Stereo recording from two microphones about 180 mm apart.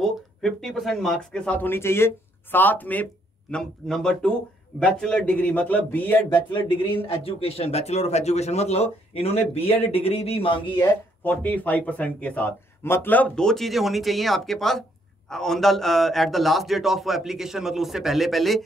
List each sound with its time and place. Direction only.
0.0 s speech: centre (ahead or behind)
7.1 s speech: 30° left (ahead or behind)
10.8 s speech: 10° left (ahead or behind)